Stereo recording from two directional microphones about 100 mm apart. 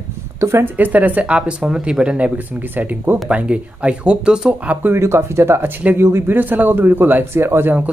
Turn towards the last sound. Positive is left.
turn(degrees=-20)  # may be behind; listen again after turning